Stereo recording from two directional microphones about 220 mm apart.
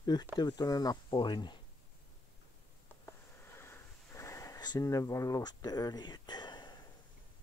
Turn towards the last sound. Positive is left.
turn(degrees=20)  # may be behind; listen again after turning